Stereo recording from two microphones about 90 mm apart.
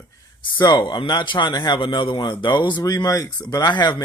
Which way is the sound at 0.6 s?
55° left (ahead or behind).